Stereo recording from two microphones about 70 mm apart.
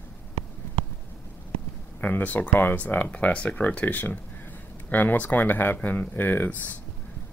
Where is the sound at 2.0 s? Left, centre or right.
Left.